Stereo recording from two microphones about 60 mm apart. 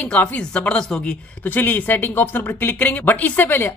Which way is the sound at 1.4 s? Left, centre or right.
Left.